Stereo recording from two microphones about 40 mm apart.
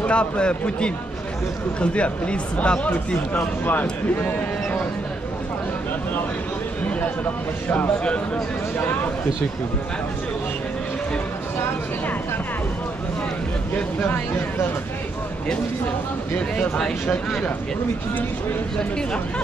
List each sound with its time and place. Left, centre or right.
0.0 s a man's voice: left
3.3 s speech: left
8.7 s speech: left